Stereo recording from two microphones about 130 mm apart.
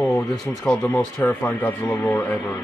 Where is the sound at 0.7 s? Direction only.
10° left (ahead or behind).